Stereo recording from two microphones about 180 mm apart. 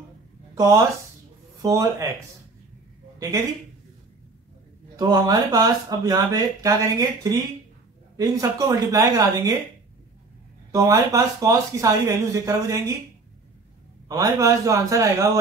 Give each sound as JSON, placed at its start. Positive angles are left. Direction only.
{"t": 1.6, "sound": "speech", "side_deg": -20}
{"t": 4.9, "sound": "speech", "side_deg": -20}
{"t": 10.7, "sound": "speech", "side_deg": -20}
{"t": 14.0, "sound": "speech", "side_deg": -20}